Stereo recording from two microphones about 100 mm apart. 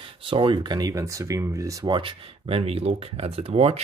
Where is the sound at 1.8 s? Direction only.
55° right (ahead or behind).